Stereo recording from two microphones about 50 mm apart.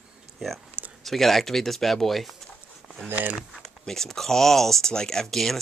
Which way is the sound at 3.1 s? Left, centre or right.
Right.